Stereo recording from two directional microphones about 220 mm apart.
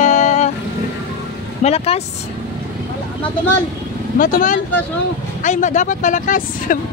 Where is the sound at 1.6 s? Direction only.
30° left (ahead or behind).